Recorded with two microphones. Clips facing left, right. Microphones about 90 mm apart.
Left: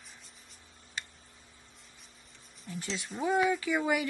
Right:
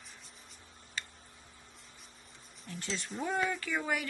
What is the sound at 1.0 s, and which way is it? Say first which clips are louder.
Tick: left 1 dB; 20° left (ahead or behind).